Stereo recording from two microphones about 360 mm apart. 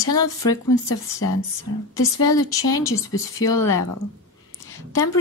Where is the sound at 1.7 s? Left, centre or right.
Left.